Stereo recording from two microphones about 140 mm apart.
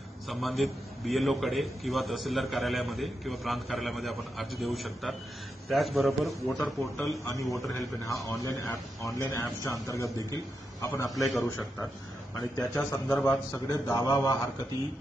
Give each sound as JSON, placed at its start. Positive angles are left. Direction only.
{"t": 0.3, "sound": "a man's voice", "side_deg": 0}
{"t": 8.0, "sound": "a man's voice", "side_deg": 25}
{"t": 11.1, "sound": "a man's voice", "side_deg": 0}
{"t": 11.3, "sound": "a man's voice", "side_deg": 20}